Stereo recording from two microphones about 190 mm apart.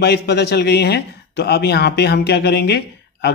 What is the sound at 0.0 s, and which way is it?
A man's voice, 60° left (ahead or behind).